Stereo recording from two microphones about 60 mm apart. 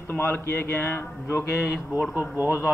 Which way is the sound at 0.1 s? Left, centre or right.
Left.